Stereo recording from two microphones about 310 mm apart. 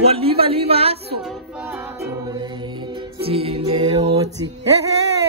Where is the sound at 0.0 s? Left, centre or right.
Centre.